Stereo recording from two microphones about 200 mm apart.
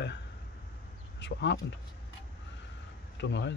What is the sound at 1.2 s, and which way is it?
Speech, 60° left (ahead or behind).